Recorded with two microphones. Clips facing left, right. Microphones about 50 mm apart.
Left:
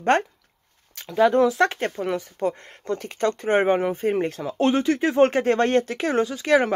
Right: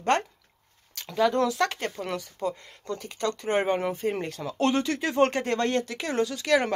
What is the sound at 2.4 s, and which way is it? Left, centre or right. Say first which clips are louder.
Speech: left 5 dB; left.